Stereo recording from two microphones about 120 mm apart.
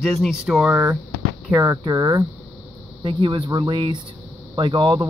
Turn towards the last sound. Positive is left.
turn(degrees=-40)  # may be behind; listen again after turning